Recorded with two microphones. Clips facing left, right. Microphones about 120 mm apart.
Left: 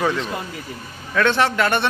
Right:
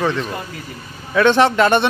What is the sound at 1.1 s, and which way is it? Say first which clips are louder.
Speech: right 5 dB; 20° right (ahead or behind).